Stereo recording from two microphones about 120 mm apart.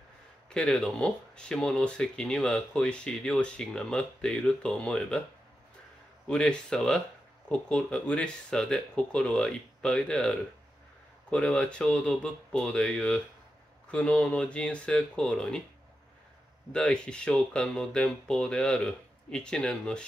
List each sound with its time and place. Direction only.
0.5 s speech: 5° left (ahead or behind)
6.2 s speech: 5° left (ahead or behind)
16.7 s speech: 5° left (ahead or behind)